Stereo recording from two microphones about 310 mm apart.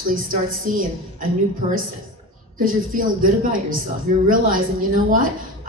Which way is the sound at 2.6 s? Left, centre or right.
Right.